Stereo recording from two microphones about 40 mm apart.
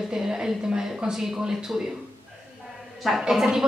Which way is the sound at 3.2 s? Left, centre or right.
Centre.